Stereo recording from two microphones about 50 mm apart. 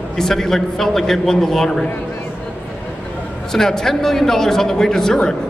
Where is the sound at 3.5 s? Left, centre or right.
Centre.